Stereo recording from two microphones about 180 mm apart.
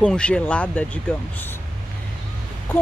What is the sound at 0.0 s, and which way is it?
Speech, 5° left (ahead or behind).